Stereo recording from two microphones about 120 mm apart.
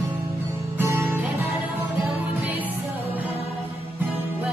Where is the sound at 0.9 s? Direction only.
20° right (ahead or behind).